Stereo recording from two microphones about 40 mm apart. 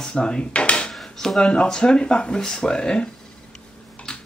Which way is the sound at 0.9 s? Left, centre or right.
Centre.